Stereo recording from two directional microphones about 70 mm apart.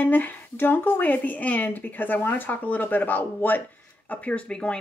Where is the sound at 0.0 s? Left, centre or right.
Left.